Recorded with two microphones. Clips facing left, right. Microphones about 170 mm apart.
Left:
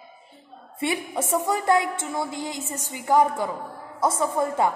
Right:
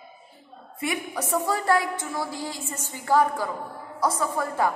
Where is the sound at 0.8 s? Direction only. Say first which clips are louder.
Left 3 dB; 30° left (ahead or behind).